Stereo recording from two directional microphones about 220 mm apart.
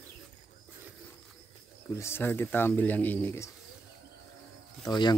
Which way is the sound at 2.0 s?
10° left (ahead or behind).